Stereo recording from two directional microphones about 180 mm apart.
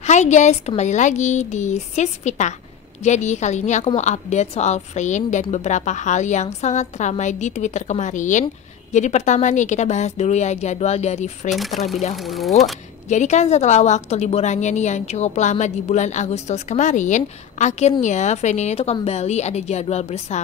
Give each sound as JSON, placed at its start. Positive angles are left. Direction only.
{"t": 0.0, "sound": "a woman's voice", "side_deg": 40}
{"t": 12.2, "sound": "speech", "side_deg": 0}
{"t": 13.1, "sound": "a woman's voice", "side_deg": 40}